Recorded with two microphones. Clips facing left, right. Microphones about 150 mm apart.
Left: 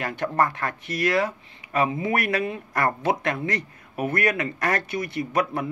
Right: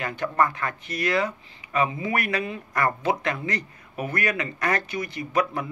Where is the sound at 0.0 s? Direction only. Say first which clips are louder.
Even; 60° left (ahead or behind).